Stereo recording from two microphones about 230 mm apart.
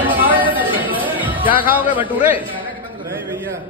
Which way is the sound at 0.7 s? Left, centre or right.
Left.